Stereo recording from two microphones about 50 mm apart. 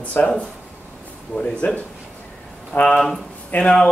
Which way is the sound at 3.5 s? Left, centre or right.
Left.